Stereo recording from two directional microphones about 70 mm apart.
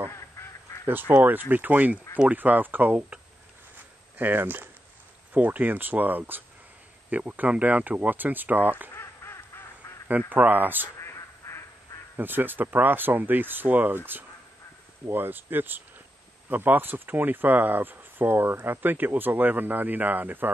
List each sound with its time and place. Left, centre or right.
0.1 s goose: left
0.8 s speech: right
4.2 s speech: right
8.9 s duck: left
10.0 s speech: right
11.0 s quack: left
12.2 s speech: right